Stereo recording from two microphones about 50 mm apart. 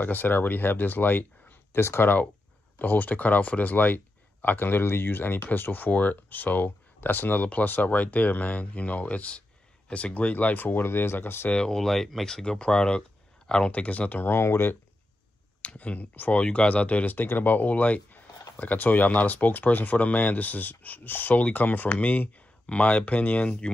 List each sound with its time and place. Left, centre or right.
0.0 s speech: left
1.7 s speech: left
2.8 s speech: left
11.5 s speech: centre
11.8 s speech: centre
13.7 s speech: left
14.2 s speech: left
15.6 s speech: left